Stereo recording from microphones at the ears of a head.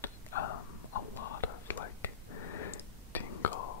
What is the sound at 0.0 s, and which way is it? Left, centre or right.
Whispering, left.